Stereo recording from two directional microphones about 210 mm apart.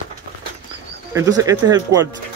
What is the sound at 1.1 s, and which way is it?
Speech, 15° right (ahead or behind).